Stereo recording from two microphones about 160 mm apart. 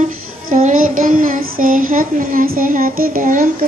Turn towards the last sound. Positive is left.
turn(degrees=-60)  # may be behind; listen again after turning